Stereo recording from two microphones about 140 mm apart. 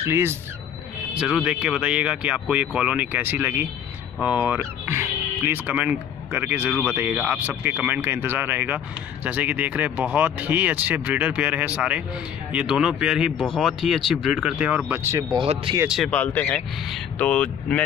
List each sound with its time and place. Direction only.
0.0 s speech: 20° right (ahead or behind)
1.1 s speech: 5° right (ahead or behind)
15.1 s speech: 25° right (ahead or behind)
15.4 s speech: 40° right (ahead or behind)
16.1 s speech: 10° left (ahead or behind)